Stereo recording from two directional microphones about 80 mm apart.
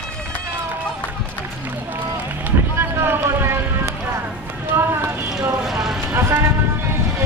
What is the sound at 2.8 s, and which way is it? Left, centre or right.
Vehicle, right.